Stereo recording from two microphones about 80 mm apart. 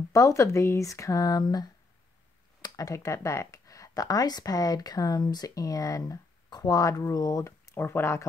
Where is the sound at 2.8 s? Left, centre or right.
Left.